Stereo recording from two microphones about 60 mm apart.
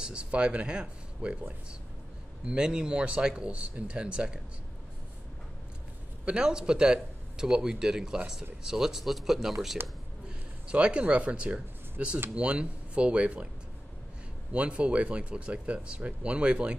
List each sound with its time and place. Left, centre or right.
0.0 s speech: centre
2.4 s speech: centre
6.2 s speech: centre
10.7 s speech: centre
14.5 s speech: centre